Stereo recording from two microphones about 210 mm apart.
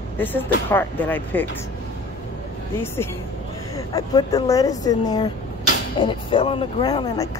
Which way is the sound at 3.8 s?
15° left (ahead or behind).